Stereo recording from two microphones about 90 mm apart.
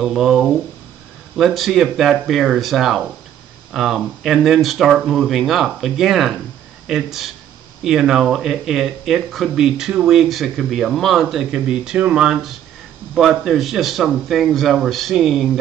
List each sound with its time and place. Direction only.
0.0 s speech: centre (ahead or behind)